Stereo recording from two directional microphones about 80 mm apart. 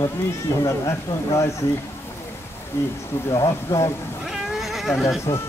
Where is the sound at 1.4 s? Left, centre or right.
Left.